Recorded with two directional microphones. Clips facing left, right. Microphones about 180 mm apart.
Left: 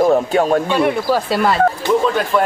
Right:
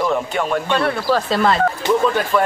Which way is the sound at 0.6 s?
10° left (ahead or behind).